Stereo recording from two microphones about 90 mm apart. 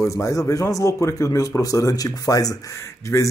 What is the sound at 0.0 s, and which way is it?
Speech, 35° left (ahead or behind).